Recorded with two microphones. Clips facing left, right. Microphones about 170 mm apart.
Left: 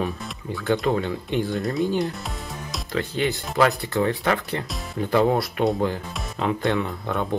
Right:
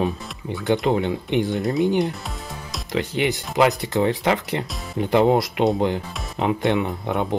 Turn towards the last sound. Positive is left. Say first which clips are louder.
# right 3 dB
turn(degrees=-20)  # may be behind; listen again after turning